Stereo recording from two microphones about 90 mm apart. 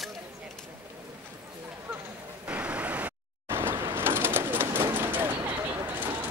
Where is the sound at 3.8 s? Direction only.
25° right (ahead or behind).